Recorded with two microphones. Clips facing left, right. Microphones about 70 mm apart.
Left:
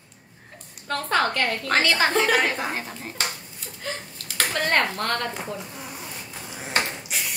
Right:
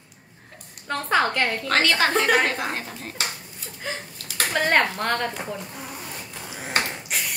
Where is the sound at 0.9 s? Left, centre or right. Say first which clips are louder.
Right 1 dB; centre.